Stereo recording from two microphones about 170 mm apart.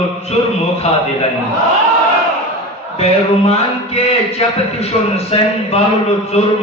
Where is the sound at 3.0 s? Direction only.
35° left (ahead or behind).